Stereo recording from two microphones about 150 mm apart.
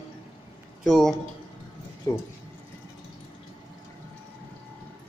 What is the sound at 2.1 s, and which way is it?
Speech, 25° left (ahead or behind).